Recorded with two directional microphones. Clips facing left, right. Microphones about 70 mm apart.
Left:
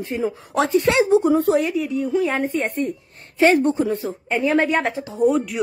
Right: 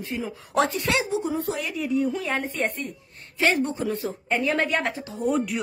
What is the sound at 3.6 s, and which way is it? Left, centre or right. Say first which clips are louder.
Speech: left 7 dB; left.